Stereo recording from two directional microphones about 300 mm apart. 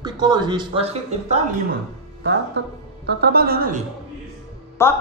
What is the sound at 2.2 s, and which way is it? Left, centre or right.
A man's voice, right.